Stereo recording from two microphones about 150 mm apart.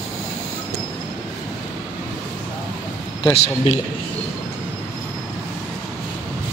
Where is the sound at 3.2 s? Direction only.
40° left (ahead or behind).